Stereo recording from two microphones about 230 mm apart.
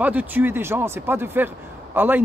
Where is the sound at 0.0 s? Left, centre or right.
Centre.